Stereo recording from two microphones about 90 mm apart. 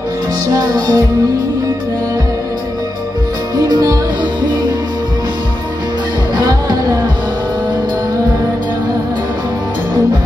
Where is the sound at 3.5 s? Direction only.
45° right (ahead or behind).